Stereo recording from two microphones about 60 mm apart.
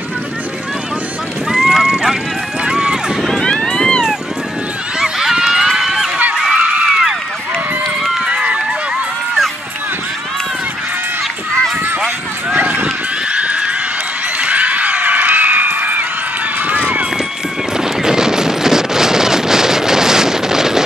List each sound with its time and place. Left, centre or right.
1.5 s boat: centre
2.6 s run: centre
3.3 s music: centre
5.0 s run: centre
6.5 s a sound: right
8.3 s run: centre
12.5 s run: right
13.3 s a sound: centre
16.6 s run: right
17.7 s a sound: centre